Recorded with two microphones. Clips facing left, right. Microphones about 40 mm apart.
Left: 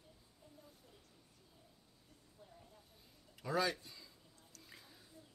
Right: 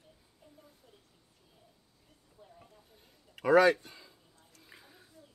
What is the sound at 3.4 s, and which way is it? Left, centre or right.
Speech, right.